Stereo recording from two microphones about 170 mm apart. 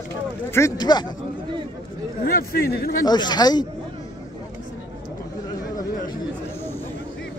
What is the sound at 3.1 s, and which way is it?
Speech, 25° left (ahead or behind).